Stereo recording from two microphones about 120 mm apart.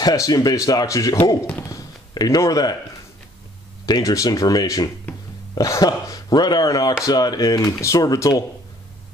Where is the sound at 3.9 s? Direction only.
30° left (ahead or behind).